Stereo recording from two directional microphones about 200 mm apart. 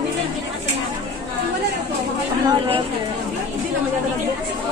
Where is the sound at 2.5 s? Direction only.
25° right (ahead or behind).